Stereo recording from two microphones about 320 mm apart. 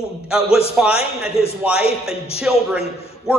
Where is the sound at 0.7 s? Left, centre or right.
Centre.